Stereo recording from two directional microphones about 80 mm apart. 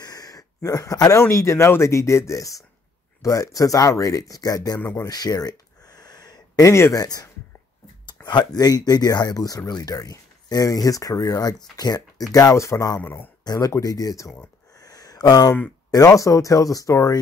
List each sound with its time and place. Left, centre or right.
0.0 s a sound: left
0.7 s speech: left
5.0 s a sound: left
6.7 s speech: left
7.0 s speech: left
8.3 s speech: left
13.0 s speech: left
13.4 s speech: left
14.8 s a sound: left
15.9 s speech: left